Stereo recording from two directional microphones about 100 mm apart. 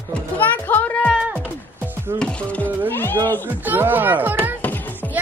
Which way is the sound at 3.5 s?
20° right (ahead or behind).